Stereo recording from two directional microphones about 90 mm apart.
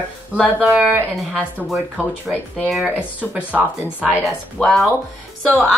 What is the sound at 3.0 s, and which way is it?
Speech, 15° right (ahead or behind).